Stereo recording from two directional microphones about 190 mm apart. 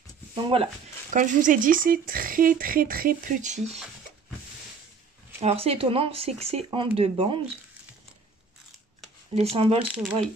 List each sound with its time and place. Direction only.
0.3 s speech: 25° right (ahead or behind)
1.1 s speech: 40° right (ahead or behind)
5.4 s speech: 30° right (ahead or behind)
9.3 s speech: 30° right (ahead or behind)